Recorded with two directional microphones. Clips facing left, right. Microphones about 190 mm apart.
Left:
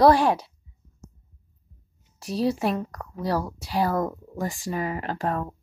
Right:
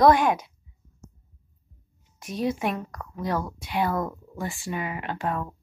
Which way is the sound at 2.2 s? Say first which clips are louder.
Left 3 dB; 35° left (ahead or behind).